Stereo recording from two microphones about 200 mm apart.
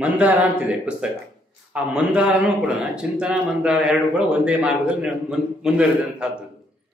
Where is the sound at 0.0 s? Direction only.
10° right (ahead or behind).